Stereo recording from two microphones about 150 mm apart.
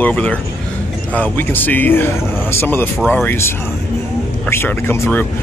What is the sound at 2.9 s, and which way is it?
Speech, 5° right (ahead or behind).